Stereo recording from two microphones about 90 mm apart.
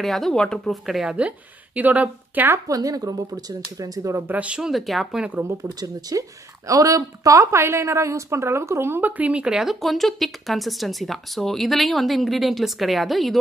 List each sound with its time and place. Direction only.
0.0 s a woman's voice: 5° left (ahead or behind)
1.8 s a woman's voice: 20° right (ahead or behind)
2.5 s speech: 40° right (ahead or behind)
4.3 s speech: 15° right (ahead or behind)
5.6 s a woman's voice: 40° right (ahead or behind); by 13.4 s centre (ahead or behind)